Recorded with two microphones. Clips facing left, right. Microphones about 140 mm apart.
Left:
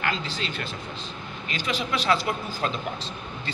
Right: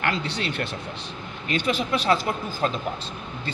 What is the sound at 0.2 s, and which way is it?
Speech, 65° right (ahead or behind).